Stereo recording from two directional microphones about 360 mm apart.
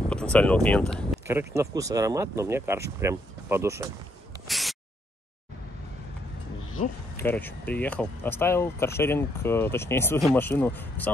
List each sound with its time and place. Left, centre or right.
0.1 s speech: centre
4.5 s a sound: centre
7.2 s speech: centre